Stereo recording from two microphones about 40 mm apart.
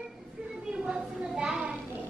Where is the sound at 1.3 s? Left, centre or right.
Centre.